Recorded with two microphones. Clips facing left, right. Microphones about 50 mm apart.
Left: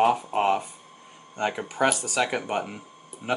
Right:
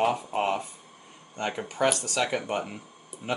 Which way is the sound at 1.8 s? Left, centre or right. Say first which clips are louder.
Left 2 dB; centre.